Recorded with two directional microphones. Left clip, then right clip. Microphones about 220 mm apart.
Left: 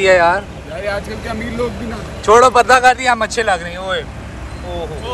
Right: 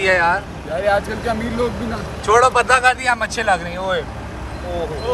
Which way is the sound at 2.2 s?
5° right (ahead or behind).